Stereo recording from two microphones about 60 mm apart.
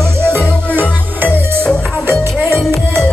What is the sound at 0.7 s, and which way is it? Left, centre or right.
Music, right.